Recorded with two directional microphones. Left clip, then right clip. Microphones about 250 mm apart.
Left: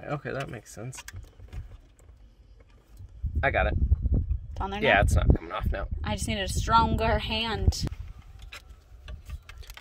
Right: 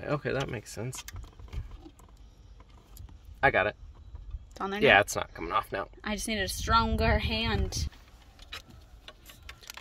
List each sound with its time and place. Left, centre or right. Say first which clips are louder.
0.0 s speech: right 2 dB; right
3.3 s speech: right 1 dB; right
4.6 s speech: even; centre
4.9 s speech: even; centre
5.9 s speech: left 3 dB; centre